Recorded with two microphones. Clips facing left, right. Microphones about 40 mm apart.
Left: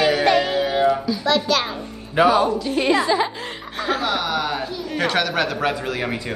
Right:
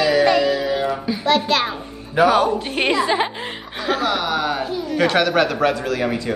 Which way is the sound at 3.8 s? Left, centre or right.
Right.